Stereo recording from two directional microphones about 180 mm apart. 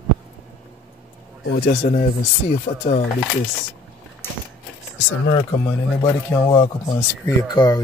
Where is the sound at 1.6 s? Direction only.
45° left (ahead or behind).